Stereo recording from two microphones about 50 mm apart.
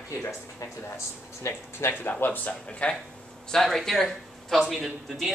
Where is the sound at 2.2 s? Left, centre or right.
Left.